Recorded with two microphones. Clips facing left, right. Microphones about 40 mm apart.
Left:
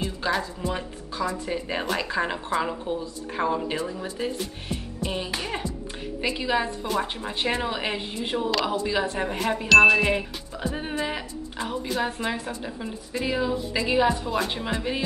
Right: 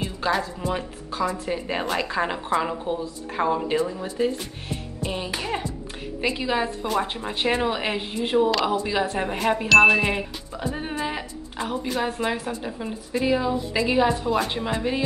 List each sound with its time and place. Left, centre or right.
0.2 s speech: centre
1.1 s a woman's voice: right
1.4 s a woman's voice: centre
8.5 s a woman's voice: centre
11.6 s a woman's voice: right
11.9 s a woman's voice: centre